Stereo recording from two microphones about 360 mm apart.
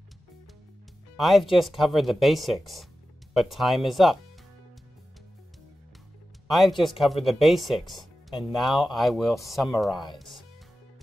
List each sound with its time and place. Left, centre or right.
1.1 s speech: centre
7.0 s speech: centre